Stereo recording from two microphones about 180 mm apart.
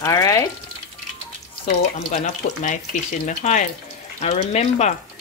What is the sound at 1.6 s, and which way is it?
Speech, 45° left (ahead or behind).